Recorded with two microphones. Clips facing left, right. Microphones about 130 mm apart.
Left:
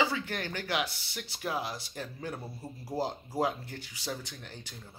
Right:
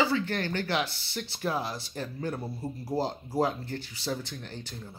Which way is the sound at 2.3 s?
15° right (ahead or behind).